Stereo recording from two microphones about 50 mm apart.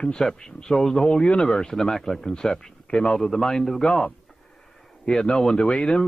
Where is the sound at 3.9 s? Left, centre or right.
Centre.